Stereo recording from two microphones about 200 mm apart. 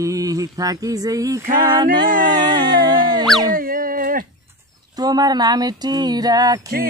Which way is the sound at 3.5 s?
45° right (ahead or behind).